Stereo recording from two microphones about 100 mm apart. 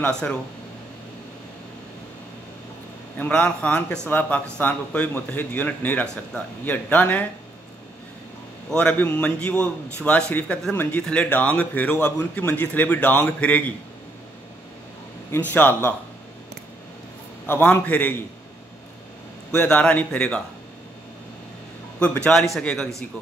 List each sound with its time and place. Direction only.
0.1 s a man's voice: 10° left (ahead or behind)
3.2 s a man's voice: 15° left (ahead or behind)
8.6 s a man's voice: 10° left (ahead or behind)
15.3 s a man's voice: 20° left (ahead or behind)
17.5 s a man's voice: 20° left (ahead or behind)
19.5 s a man's voice: 15° left (ahead or behind)
22.0 s a man's voice: 10° left (ahead or behind)